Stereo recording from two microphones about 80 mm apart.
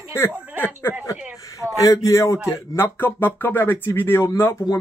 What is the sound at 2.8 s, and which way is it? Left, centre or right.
A man's voice, left.